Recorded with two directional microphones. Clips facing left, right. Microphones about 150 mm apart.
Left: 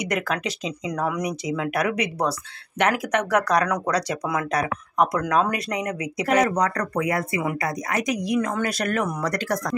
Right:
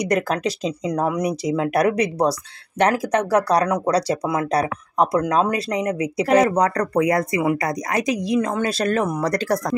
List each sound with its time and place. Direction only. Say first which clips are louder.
0.1 s speech: right 5 dB; 35° right (ahead or behind)